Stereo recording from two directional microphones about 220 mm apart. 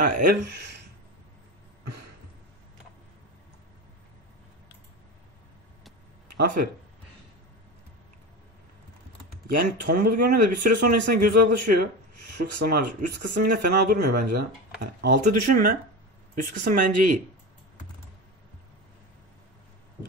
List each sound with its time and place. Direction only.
0.0 s speech: 45° right (ahead or behind)
6.3 s speech: 45° right (ahead or behind)
9.5 s speech: 45° right (ahead or behind)